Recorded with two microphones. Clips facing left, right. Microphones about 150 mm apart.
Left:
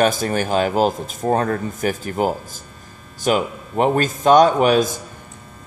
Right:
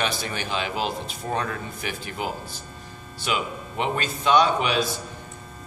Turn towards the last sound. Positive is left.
turn(degrees=45)  # may be behind; listen again after turning